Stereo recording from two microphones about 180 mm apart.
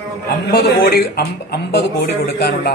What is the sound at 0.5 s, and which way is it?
A man's voice, 60° left (ahead or behind).